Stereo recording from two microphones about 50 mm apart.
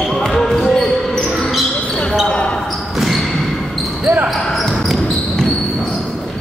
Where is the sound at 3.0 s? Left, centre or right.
Centre.